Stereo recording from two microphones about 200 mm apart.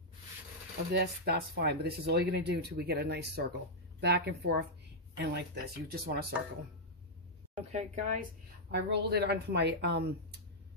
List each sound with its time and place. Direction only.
0.9 s speech: 50° right (ahead or behind)
7.5 s a woman's voice: 40° right (ahead or behind)
8.7 s speech: 55° right (ahead or behind)